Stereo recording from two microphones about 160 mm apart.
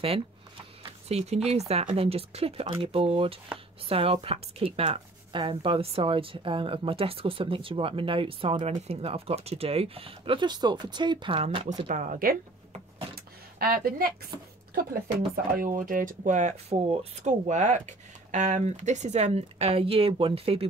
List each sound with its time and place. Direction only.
1.0 s speech: 40° right (ahead or behind)
11.9 s speech: 55° right (ahead or behind)
13.1 s a sound: 70° right (ahead or behind)
15.3 s speech: 60° right (ahead or behind); by 20.6 s 35° right (ahead or behind)